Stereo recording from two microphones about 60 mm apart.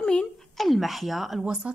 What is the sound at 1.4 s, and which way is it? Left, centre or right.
Speech, centre.